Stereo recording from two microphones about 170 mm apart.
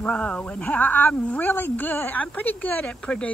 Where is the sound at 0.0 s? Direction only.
5° left (ahead or behind).